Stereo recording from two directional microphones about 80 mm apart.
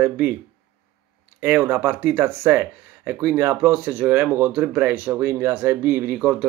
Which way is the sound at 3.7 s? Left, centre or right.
Centre.